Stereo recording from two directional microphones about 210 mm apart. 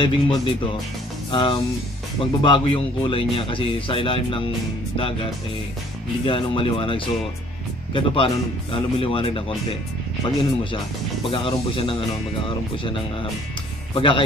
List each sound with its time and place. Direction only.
0.0 s speech: 25° left (ahead or behind)